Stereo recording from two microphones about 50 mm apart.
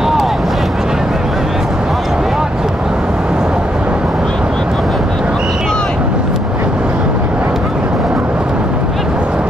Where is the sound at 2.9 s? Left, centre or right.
Right.